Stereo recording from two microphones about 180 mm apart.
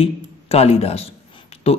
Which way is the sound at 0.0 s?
35° left (ahead or behind).